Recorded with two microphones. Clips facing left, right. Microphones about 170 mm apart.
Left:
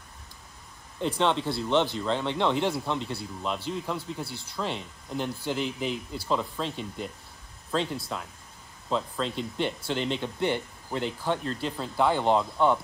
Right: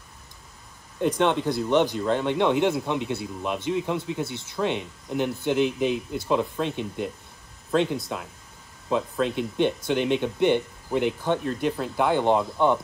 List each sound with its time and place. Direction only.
1.0 s speech: 15° right (ahead or behind)